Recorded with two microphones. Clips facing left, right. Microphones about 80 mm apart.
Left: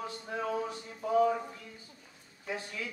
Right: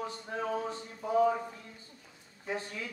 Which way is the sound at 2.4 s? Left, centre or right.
Right.